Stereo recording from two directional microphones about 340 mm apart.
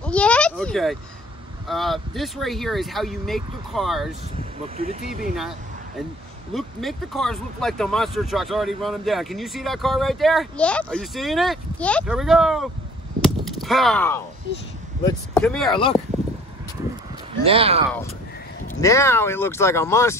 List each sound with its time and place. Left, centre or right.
0.0 s a sound: centre
1.7 s speech: centre
4.4 s speech: right
6.5 s speech: centre
13.2 s a sound: centre
15.0 s speech: centre
15.7 s speech: centre
17.4 s speech: centre
18.8 s speech: centre